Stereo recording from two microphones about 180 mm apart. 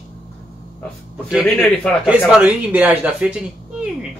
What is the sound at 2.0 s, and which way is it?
Speech, 5° right (ahead or behind).